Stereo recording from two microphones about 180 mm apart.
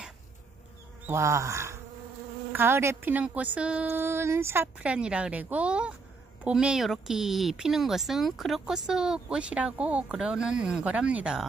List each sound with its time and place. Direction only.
1.0 s a woman's voice: 15° right (ahead or behind)